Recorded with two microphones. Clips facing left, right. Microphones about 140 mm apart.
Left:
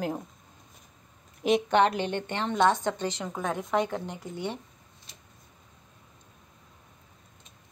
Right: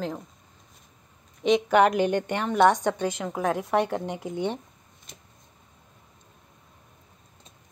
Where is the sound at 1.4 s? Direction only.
Centre (ahead or behind).